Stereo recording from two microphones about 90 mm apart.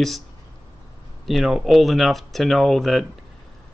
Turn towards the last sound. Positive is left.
turn(degrees=0)  # may be behind; listen again after turning